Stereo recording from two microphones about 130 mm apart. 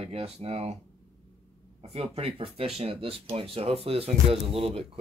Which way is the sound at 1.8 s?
55° right (ahead or behind).